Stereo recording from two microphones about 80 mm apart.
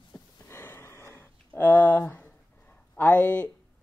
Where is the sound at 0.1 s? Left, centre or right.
Centre.